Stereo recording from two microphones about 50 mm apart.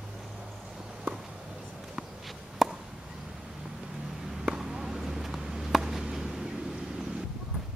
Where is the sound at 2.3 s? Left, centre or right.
Centre.